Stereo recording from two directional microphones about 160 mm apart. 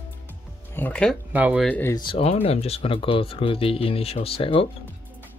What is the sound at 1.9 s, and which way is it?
Speech, 30° left (ahead or behind).